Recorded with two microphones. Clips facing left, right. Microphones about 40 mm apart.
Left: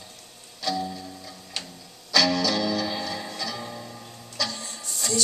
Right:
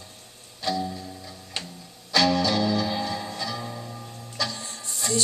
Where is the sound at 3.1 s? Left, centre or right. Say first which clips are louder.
Right 1 dB; centre.